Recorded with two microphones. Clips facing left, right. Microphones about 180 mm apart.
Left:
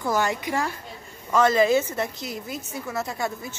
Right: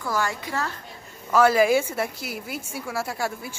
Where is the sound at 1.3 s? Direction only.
10° right (ahead or behind).